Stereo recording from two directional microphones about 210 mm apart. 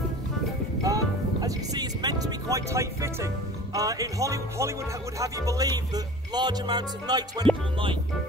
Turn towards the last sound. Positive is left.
turn(degrees=-20)  # may be behind; listen again after turning